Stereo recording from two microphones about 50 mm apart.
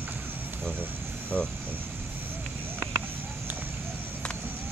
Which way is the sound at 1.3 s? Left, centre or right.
Right.